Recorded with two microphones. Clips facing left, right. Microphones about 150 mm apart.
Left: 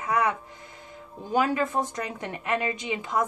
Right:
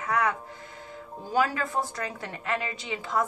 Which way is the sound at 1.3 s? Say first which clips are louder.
Left 2 dB; 20° left (ahead or behind).